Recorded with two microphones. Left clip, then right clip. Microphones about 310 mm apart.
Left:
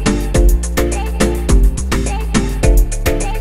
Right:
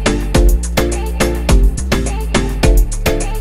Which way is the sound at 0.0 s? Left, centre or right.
Centre.